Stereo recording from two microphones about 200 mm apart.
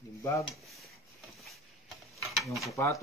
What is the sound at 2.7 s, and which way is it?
Speech, 15° left (ahead or behind).